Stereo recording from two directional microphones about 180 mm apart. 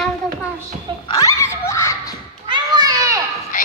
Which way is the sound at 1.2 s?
15° left (ahead or behind).